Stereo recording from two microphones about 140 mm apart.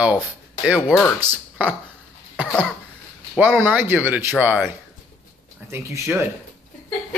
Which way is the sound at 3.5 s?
15° right (ahead or behind).